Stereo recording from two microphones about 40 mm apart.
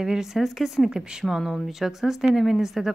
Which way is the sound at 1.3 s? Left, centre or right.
Centre.